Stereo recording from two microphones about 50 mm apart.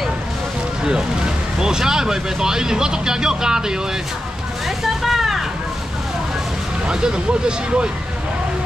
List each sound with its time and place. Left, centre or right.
0.8 s speech: centre
4.6 s vehicle: centre
6.9 s speech: centre